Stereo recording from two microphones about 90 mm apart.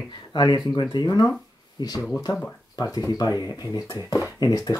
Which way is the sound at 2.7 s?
45° left (ahead or behind).